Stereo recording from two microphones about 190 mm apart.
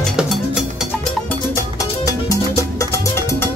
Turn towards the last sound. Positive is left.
turn(degrees=15)  # may be behind; listen again after turning